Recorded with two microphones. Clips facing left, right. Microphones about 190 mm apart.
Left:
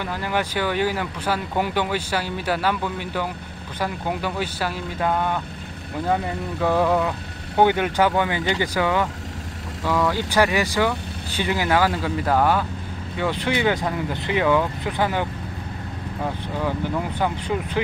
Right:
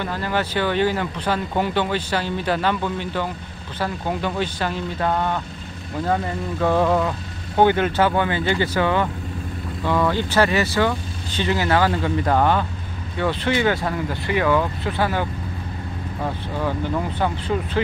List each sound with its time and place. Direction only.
0.0 s speech: 15° left (ahead or behind)
17.2 s speech: 15° left (ahead or behind)